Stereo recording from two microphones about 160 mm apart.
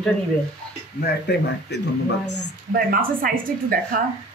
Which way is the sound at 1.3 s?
90° left.